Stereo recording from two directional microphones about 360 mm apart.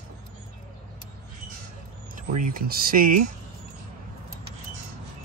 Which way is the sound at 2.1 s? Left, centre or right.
Right.